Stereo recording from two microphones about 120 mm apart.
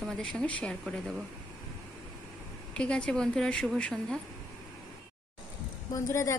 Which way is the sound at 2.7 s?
10° left (ahead or behind).